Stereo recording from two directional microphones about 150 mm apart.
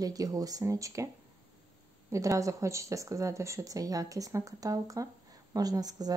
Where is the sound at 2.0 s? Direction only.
20° right (ahead or behind).